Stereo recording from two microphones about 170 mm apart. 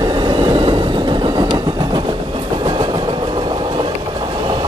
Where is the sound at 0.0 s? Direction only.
25° right (ahead or behind).